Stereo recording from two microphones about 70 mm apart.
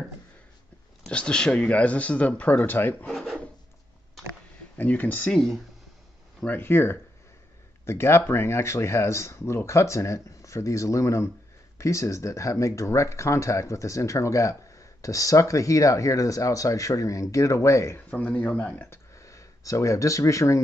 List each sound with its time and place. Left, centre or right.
1.0 s speech: centre; by 3.1 s left
3.1 s filing: centre
4.7 s speech: left
5.3 s speech: centre
6.4 s speech: left
18.1 s speech: left
18.9 s speech: left